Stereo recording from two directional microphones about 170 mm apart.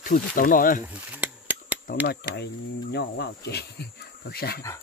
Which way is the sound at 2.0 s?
75° left (ahead or behind).